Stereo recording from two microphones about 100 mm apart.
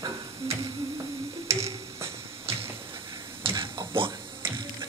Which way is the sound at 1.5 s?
30° right (ahead or behind).